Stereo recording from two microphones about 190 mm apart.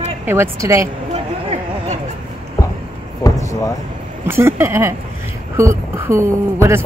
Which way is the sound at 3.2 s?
15° left (ahead or behind).